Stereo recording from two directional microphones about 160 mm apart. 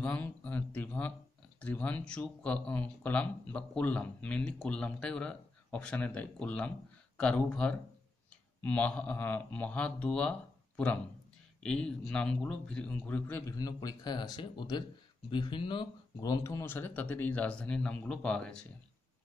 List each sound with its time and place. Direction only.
0.0 s speech: 10° left (ahead or behind)
11.6 s a man's voice: 5° left (ahead or behind)
13.6 s a man's voice: 20° left (ahead or behind); by 18.7 s 5° left (ahead or behind)